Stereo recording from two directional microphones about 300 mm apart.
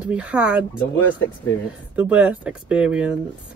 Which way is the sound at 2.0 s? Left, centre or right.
Centre.